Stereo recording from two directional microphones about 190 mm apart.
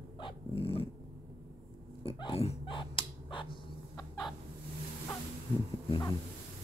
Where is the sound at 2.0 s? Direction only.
30° left (ahead or behind).